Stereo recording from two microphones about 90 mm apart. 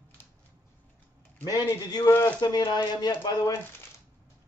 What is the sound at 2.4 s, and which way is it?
Speech, 55° left (ahead or behind).